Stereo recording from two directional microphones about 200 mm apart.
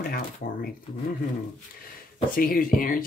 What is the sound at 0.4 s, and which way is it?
Speech, 50° left (ahead or behind).